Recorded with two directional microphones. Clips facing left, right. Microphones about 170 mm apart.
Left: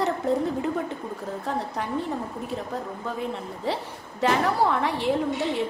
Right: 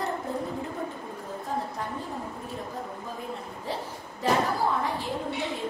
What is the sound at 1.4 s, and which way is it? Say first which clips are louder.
Speech: left 2 dB; 70° left (ahead or behind).